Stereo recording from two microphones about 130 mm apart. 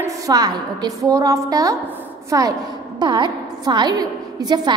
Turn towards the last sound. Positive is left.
turn(degrees=-30)  # may be behind; listen again after turning